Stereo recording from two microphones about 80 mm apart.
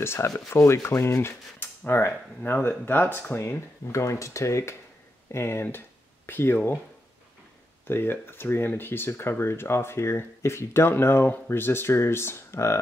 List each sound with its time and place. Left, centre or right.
0.0 s speech: left
7.8 s speech: left